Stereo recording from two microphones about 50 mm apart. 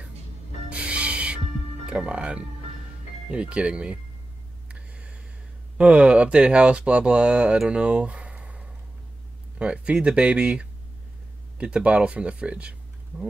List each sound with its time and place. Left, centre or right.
0.7 s music: right
1.9 s speech: centre
4.6 s a sound: right
5.8 s speech: right